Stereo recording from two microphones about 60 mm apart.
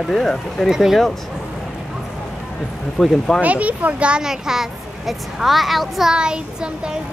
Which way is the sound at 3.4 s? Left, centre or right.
Right.